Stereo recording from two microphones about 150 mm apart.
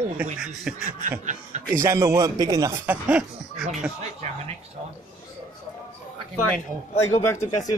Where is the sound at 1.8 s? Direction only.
20° right (ahead or behind).